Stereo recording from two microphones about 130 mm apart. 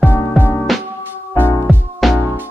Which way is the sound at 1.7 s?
Centre (ahead or behind).